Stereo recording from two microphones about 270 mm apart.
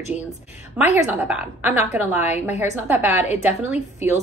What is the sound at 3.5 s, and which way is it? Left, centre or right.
Speech, left.